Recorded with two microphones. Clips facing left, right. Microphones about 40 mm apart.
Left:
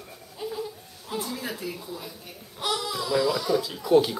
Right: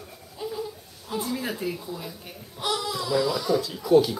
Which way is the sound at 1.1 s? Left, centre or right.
Centre.